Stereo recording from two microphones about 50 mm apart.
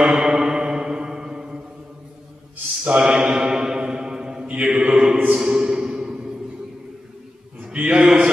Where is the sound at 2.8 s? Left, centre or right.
Right.